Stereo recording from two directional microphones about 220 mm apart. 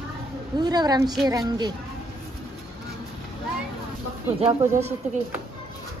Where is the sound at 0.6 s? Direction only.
20° right (ahead or behind).